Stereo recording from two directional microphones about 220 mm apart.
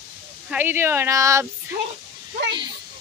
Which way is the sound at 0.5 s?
10° right (ahead or behind).